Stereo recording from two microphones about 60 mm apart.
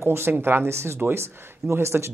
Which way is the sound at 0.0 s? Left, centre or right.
Right.